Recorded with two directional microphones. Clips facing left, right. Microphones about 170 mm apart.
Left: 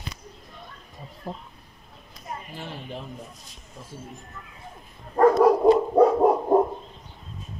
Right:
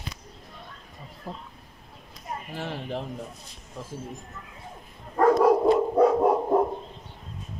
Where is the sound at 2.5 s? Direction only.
80° right.